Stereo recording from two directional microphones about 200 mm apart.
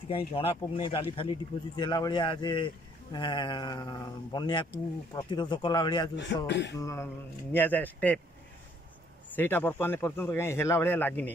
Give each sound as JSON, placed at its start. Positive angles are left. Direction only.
{"t": 0.1, "sound": "speech", "side_deg": 30}
{"t": 6.1, "sound": "speech", "side_deg": 60}
{"t": 6.8, "sound": "a man's voice", "side_deg": 15}
{"t": 9.3, "sound": "a man's voice", "side_deg": 10}